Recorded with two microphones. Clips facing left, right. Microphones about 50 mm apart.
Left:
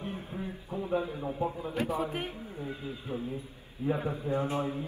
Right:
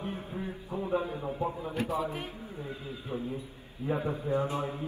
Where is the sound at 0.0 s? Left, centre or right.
Right.